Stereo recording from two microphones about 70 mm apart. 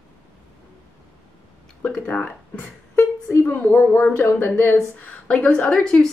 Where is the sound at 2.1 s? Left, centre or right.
Left.